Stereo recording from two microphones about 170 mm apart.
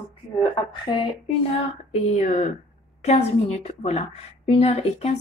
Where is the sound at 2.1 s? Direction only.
40° left (ahead or behind).